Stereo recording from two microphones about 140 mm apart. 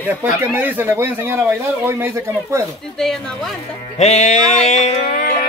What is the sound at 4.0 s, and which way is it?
Music, 55° left (ahead or behind).